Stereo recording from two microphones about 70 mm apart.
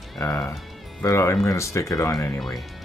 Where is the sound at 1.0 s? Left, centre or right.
Left.